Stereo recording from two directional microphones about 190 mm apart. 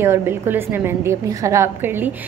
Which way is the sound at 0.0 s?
10° right (ahead or behind).